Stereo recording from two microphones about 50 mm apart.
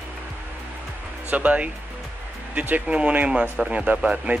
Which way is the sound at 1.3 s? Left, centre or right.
Right.